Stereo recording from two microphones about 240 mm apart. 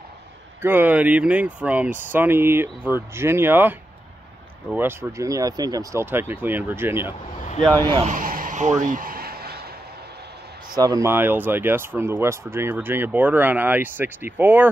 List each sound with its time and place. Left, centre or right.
0.6 s speech: centre
7.6 s speech: centre
7.9 s a sound: right
10.8 s speech: centre